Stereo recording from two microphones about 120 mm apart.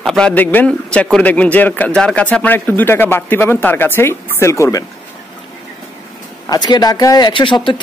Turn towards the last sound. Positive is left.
turn(degrees=40)  # may be behind; listen again after turning